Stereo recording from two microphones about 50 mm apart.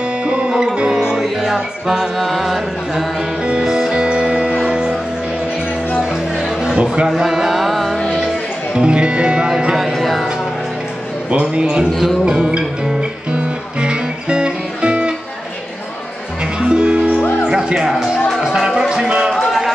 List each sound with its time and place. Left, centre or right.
0.2 s music: centre
3.2 s music: centre
3.6 s music: centre
3.9 s music: centre
6.1 s music: centre
8.7 s music: centre
9.9 s music: centre
11.2 s a man's voice: right
11.9 s music: centre
12.3 s music: centre
16.5 s music: centre